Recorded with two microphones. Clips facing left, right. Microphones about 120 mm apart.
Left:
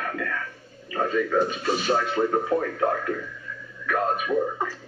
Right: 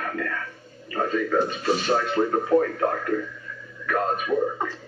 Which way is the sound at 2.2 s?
5° right (ahead or behind).